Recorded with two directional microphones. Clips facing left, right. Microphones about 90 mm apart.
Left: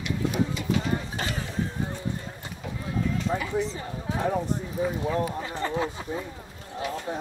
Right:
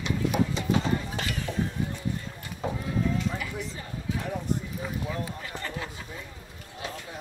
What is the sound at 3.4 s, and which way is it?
Speech, 35° left (ahead or behind).